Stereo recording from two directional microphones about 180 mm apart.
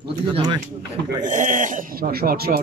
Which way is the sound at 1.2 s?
45° right (ahead or behind).